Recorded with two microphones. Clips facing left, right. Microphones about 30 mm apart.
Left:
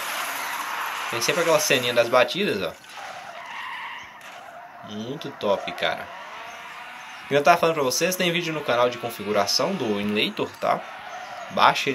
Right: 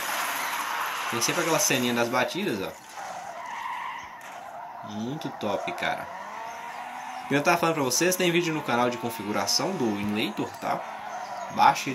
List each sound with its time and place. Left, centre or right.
1.1 s speech: left
3.5 s skidding: left
4.9 s speech: left
7.2 s speech: left
11.5 s a man's voice: left